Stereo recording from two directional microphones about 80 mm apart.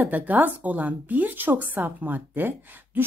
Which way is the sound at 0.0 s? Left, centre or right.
Right.